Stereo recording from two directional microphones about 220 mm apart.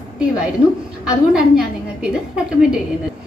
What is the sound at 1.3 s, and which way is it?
A woman's voice, 5° right (ahead or behind).